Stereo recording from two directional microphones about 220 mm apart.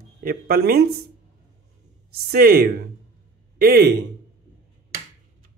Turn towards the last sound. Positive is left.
turn(degrees=-45)  # may be behind; listen again after turning